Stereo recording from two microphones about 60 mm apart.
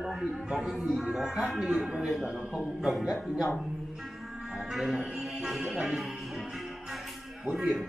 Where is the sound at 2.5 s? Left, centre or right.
Centre.